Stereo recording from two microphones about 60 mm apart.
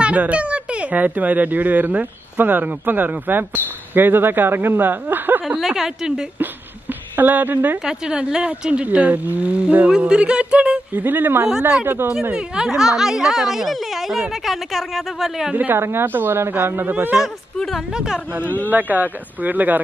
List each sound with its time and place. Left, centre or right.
0.0 s speech: right
5.6 s speech: centre
7.2 s a woman's voice: right
7.8 s speech: centre
9.8 s speech: centre
11.0 s a woman's voice: right
12.3 s a woman's voice: centre
15.5 s a woman's voice: right
17.6 s a woman's voice: centre
17.9 s speech: centre
18.7 s speech: right